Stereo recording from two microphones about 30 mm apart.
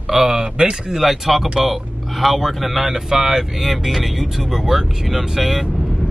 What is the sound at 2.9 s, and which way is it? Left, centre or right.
Speech, centre.